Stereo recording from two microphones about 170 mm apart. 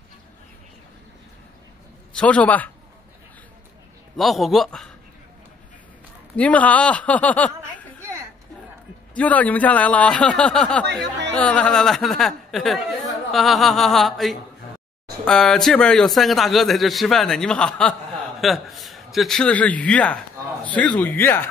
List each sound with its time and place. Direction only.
2.1 s speech: 5° left (ahead or behind)
4.2 s speech: centre (ahead or behind)
6.3 s speech: 10° left (ahead or behind)
9.1 s speech: 10° left (ahead or behind)
10.9 s speech: 90° right
11.3 s speech: 5° left (ahead or behind)